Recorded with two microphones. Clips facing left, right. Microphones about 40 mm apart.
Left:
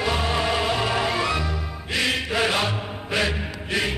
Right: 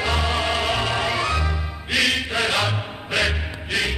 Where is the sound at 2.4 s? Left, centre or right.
Right.